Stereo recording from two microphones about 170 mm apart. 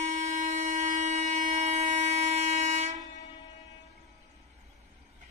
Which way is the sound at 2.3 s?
45° right (ahead or behind).